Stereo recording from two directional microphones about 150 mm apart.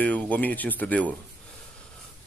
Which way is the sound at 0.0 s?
10° left (ahead or behind).